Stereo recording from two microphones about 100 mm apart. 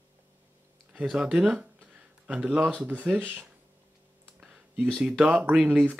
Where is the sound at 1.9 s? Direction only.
10° right (ahead or behind).